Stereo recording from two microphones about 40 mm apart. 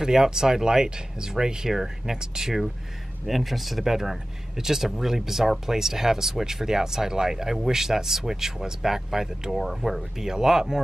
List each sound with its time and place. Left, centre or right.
0.0 s speech: centre
3.3 s speech: centre